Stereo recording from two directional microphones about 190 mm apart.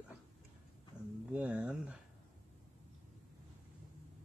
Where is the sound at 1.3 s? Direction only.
5° right (ahead or behind).